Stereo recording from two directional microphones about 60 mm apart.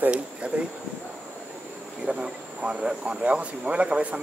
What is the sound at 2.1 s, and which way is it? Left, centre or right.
Speech, centre.